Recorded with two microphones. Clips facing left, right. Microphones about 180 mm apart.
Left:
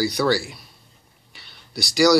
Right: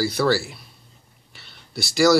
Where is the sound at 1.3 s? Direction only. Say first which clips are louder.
Even; centre (ahead or behind).